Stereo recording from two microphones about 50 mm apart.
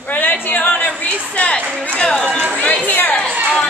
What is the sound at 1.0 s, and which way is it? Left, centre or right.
A woman's voice, left.